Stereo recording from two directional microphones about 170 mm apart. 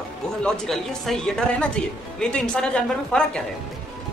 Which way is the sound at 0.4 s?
Centre (ahead or behind).